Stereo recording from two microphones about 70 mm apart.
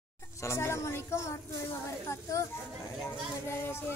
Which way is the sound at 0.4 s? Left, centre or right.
Left.